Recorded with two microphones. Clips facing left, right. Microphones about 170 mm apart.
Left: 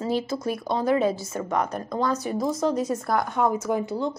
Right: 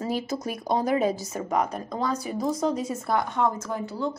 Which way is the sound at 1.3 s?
10° right (ahead or behind).